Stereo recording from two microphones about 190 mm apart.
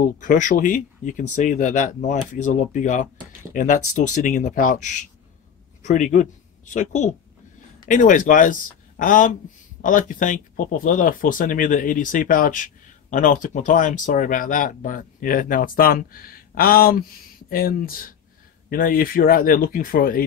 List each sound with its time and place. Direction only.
0.2 s speech: 45° left (ahead or behind)